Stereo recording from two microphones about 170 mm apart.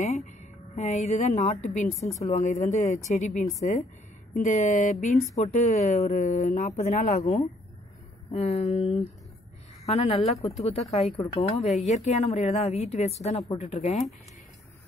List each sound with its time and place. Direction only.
0.0 s a sound: 45° left (ahead or behind)
0.7 s speech: 45° left (ahead or behind)
2.0 s a woman's voice: 15° left (ahead or behind)
2.3 s a woman's voice: 45° left (ahead or behind)
11.8 s a woman's voice: 45° left (ahead or behind)